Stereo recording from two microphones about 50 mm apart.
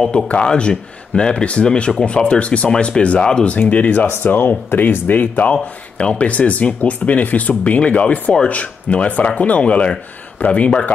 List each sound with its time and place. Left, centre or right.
0.3 s speech: left
3.0 s speech: left
3.5 s speech: left
4.1 s speech: left